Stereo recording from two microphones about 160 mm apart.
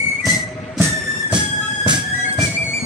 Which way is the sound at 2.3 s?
15° left (ahead or behind).